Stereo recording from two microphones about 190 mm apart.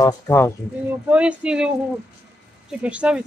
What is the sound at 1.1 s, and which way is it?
Speech, 5° right (ahead or behind).